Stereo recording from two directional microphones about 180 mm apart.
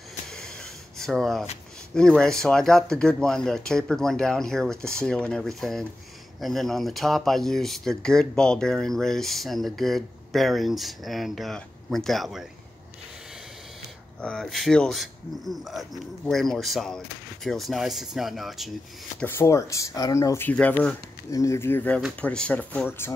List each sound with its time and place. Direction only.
0.3 s a sound: 5° left (ahead or behind)
2.0 s speech: 5° left (ahead or behind)
14.2 s speech: centre (ahead or behind)
19.1 s speech: 10° left (ahead or behind)